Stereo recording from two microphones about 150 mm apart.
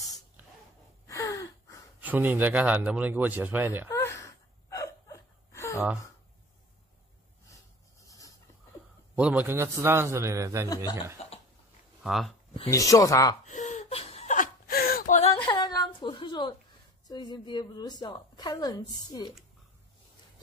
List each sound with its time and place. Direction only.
1.0 s a sound: 20° left (ahead or behind)
2.0 s speech: 10° right (ahead or behind)
3.9 s gasp: 20° left (ahead or behind)
9.1 s speech: 10° right (ahead or behind)
11.2 s a sound: 45° left (ahead or behind)
12.0 s speech: centre (ahead or behind)
12.6 s a woman's voice: 20° left (ahead or behind)
13.5 s whimper: 55° left (ahead or behind); by 15.1 s 80° left
15.3 s a sound: 30° left (ahead or behind)
17.1 s a woman's voice: 30° left (ahead or behind)